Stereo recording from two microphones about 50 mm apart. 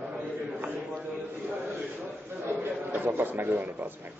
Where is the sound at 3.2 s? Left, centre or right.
Right.